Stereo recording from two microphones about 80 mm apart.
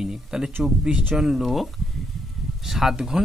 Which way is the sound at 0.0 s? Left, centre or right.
Centre.